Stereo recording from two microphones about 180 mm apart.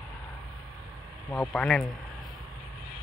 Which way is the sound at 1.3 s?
5° left (ahead or behind).